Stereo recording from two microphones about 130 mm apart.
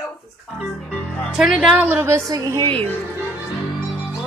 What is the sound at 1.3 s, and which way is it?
A woman's voice, centre (ahead or behind).